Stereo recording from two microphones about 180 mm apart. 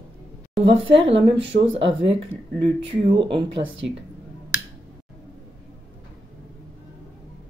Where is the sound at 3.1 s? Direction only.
30° right (ahead or behind).